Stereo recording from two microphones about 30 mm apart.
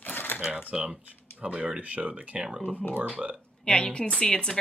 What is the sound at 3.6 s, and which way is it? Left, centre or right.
Speech, left.